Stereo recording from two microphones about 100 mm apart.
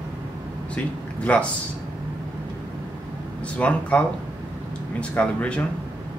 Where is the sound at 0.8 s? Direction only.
15° left (ahead or behind).